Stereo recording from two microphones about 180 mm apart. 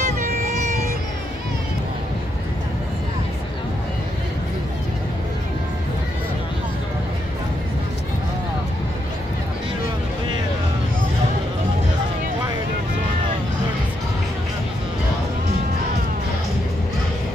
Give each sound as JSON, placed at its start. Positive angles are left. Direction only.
{"t": 0.0, "sound": "vehicle", "side_deg": -45}